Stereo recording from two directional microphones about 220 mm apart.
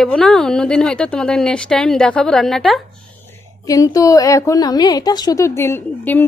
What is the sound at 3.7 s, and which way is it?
A woman's voice, 15° left (ahead or behind).